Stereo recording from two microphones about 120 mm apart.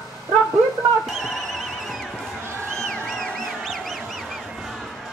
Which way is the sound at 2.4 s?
20° right (ahead or behind).